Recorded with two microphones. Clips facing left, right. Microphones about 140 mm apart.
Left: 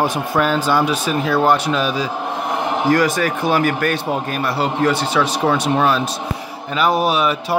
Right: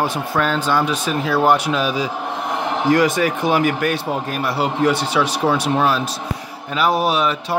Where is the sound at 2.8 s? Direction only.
20° right (ahead or behind); by 7.6 s 5° left (ahead or behind).